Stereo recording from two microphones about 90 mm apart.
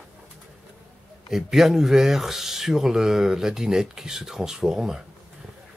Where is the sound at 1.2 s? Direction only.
5° right (ahead or behind).